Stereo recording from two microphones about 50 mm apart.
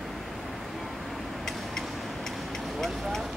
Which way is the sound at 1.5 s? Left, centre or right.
Centre.